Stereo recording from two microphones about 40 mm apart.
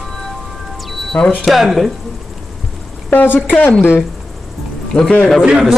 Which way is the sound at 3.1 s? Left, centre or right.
Left.